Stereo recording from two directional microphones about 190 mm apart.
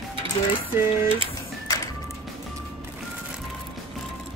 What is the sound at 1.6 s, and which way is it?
Music, 20° left (ahead or behind).